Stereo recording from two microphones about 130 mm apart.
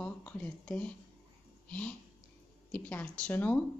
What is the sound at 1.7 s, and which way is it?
Speech, 10° left (ahead or behind).